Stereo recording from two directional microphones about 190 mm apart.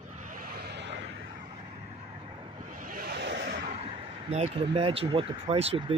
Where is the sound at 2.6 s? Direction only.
45° right (ahead or behind); by 3.5 s 65° right (ahead or behind).